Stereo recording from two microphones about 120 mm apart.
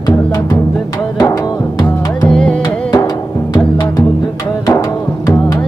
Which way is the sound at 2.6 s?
30° left (ahead or behind).